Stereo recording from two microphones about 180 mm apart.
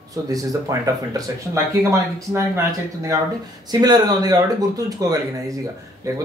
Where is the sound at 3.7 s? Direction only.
20° right (ahead or behind).